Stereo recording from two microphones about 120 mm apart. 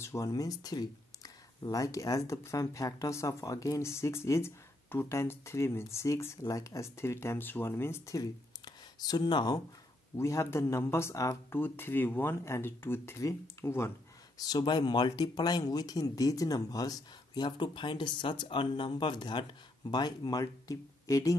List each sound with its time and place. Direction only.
0.0 s speech: 25° left (ahead or behind)
10.1 s speech: 25° left (ahead or behind)
14.4 s speech: 35° left (ahead or behind)